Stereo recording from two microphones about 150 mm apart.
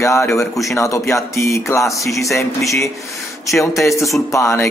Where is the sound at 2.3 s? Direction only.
20° left (ahead or behind).